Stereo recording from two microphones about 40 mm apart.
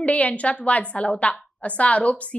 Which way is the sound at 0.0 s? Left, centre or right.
Left.